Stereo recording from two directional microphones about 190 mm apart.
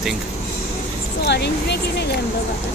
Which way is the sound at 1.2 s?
60° left (ahead or behind).